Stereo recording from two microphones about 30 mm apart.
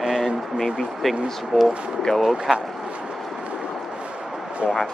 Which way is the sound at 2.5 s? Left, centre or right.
Centre.